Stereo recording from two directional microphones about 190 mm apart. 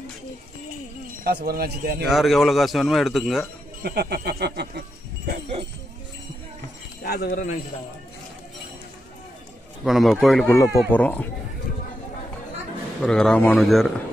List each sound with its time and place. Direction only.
1.2 s a man's voice: 50° right (ahead or behind)
2.0 s speech: centre (ahead or behind)
3.8 s speech: 55° right (ahead or behind)
7.0 s speech: 55° left (ahead or behind)
9.8 s speech: centre (ahead or behind)
10.5 s speech: 15° left (ahead or behind)
13.0 s speech: 5° left (ahead or behind)